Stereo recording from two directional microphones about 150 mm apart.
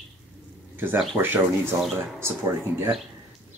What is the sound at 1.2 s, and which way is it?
Speech, 15° right (ahead or behind).